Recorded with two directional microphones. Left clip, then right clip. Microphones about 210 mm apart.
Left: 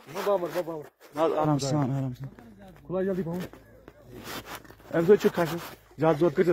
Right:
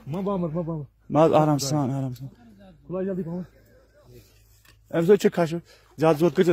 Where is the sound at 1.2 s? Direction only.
60° right (ahead or behind).